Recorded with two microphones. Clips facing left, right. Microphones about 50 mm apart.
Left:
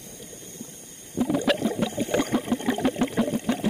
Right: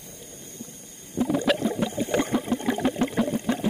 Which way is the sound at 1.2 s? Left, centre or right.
Right.